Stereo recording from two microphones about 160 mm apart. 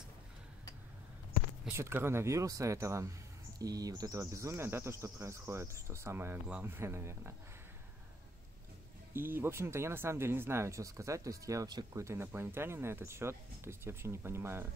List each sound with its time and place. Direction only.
1.7 s speech: 15° right (ahead or behind)
9.1 s speech: 15° right (ahead or behind)